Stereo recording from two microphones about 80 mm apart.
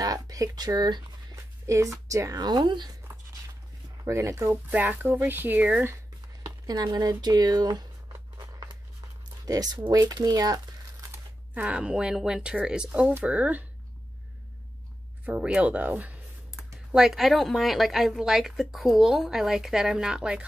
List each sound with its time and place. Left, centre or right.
0.0 s speech: right
1.3 s speech: right
4.0 s speech: right
4.7 s speech: centre
6.4 s a sound: right
7.0 s speech: right
8.1 s a sound: right
9.5 s speech: right
11.5 s speech: centre
15.2 s speech: centre
16.5 s a woman's voice: centre